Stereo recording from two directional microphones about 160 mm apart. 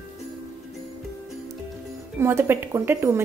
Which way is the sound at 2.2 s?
15° right (ahead or behind).